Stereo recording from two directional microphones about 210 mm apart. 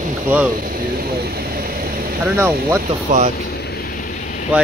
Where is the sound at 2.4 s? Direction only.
10° right (ahead or behind).